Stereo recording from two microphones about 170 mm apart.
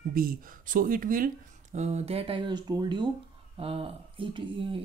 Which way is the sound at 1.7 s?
40° right (ahead or behind).